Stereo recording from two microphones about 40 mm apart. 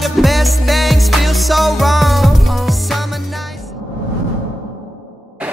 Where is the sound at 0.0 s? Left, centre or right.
Centre.